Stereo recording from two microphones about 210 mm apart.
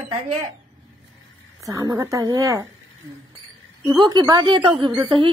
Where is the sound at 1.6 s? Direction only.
15° right (ahead or behind).